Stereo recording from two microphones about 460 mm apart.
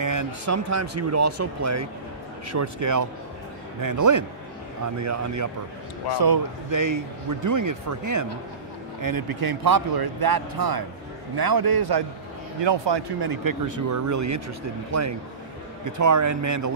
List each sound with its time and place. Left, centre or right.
0.0 s speech: right